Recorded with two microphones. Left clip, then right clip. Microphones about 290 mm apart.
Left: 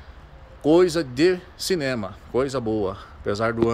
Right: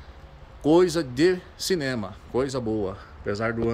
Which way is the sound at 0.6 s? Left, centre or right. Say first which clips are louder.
Left 2 dB; centre.